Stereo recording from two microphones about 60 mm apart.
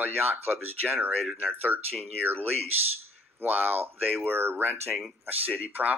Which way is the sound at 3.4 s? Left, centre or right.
Right.